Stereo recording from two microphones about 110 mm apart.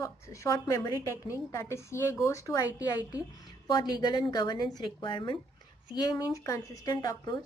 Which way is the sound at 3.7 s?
40° left (ahead or behind).